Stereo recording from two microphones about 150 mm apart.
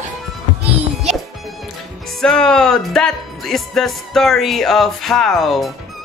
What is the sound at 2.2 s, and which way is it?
Speech, 5° left (ahead or behind).